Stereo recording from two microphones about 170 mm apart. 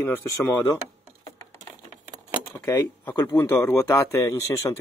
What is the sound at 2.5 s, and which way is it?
A man's voice, 10° left (ahead or behind).